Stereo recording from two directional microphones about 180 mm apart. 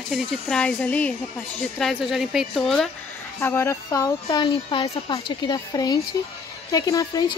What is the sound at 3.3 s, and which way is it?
Speech, 15° left (ahead or behind).